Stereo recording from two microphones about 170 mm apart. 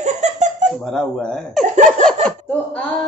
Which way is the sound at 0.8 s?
Centre (ahead or behind).